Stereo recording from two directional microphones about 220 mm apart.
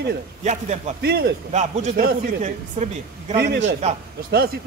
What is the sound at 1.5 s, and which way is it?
A woman's voice, 30° right (ahead or behind).